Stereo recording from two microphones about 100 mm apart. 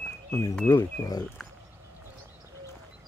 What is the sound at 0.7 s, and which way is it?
Speech, 40° left (ahead or behind).